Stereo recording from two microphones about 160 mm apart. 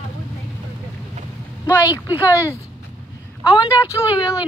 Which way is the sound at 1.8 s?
20° left (ahead or behind).